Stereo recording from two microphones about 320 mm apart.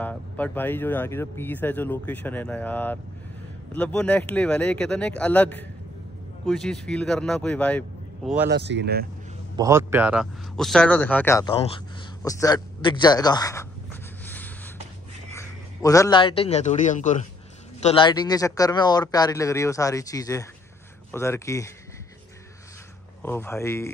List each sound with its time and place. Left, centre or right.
0.0 s speech: centre
8.5 s speech: right
9.6 s speech: centre
15.3 s a man's voice: centre
23.2 s speech: centre